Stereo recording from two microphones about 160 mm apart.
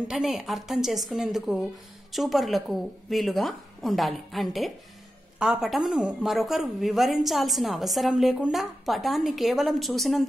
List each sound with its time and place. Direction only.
0.1 s a woman's voice: 5° right (ahead or behind)